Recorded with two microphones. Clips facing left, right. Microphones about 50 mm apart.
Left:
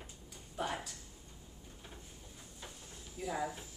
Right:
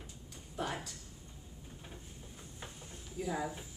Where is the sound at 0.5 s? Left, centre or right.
Centre.